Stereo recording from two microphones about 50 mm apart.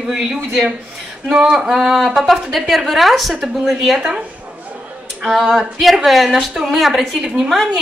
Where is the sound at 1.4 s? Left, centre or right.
Centre.